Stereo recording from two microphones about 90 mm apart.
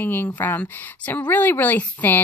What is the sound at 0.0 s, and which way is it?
A woman's voice, 25° left (ahead or behind).